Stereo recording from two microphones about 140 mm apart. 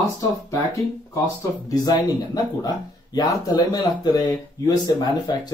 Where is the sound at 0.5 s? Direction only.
20° left (ahead or behind).